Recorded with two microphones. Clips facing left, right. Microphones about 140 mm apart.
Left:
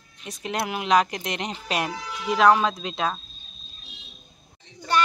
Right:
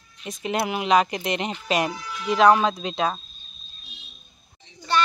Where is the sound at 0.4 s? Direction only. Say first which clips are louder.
Right 3 dB; centre (ahead or behind).